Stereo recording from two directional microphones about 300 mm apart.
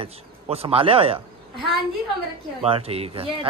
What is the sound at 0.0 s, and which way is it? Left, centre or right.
A man's voice, centre.